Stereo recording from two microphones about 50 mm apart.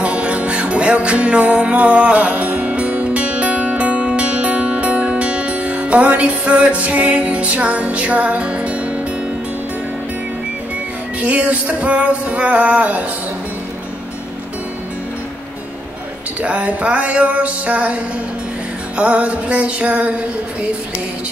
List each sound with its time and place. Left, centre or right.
0.0 s music: right
11.1 s music: right
16.3 s music: right